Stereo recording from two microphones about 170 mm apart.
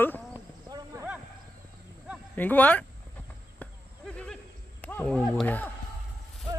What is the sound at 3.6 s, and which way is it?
Insect, 5° left (ahead or behind).